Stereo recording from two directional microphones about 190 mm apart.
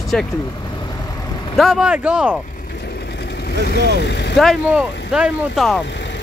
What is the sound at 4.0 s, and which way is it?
Speech, 65° left (ahead or behind).